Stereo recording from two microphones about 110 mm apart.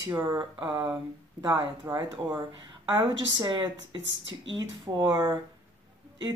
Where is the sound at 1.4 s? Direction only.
30° right (ahead or behind).